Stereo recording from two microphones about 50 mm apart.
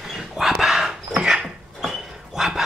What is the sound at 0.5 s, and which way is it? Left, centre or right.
Dog, centre.